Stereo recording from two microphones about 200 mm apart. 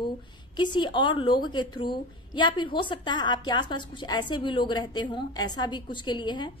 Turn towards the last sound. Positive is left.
turn(degrees=20)  # may be behind; listen again after turning